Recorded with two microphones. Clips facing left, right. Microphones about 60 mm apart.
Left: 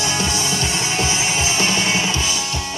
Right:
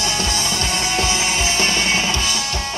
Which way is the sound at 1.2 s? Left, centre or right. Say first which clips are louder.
Even; right.